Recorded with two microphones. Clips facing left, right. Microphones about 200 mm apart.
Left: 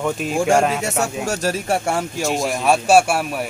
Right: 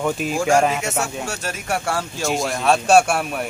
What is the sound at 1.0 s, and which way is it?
Speech, 40° left (ahead or behind).